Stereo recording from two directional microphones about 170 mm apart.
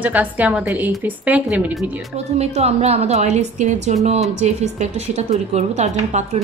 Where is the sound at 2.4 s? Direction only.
40° right (ahead or behind).